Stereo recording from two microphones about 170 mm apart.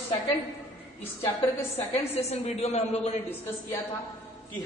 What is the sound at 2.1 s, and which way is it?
A man's voice, 35° left (ahead or behind).